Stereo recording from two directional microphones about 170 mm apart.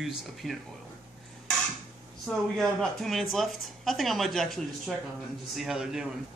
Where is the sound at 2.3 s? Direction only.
Centre (ahead or behind).